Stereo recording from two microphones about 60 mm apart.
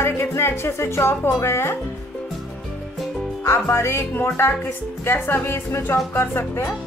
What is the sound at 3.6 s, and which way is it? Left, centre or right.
Speech, left.